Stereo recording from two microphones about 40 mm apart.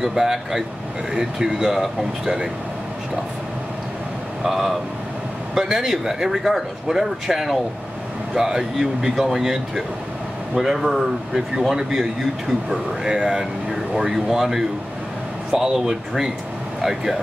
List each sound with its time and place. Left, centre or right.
0.0 s speech: centre
4.4 s speech: centre
13.7 s speech: centre